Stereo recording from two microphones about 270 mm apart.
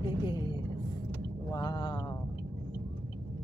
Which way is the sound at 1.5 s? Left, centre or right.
Centre.